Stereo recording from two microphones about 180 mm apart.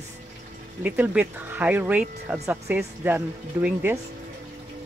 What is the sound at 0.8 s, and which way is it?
Speech, 10° right (ahead or behind).